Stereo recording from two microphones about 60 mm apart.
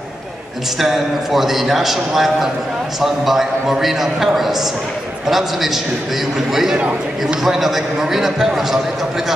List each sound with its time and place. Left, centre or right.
0.7 s a man's voice: centre
5.3 s a man's voice: centre
6.8 s speech: right
7.4 s a man's voice: centre